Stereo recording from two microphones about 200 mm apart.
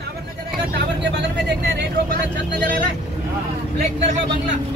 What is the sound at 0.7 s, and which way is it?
Vehicle, 60° right (ahead or behind).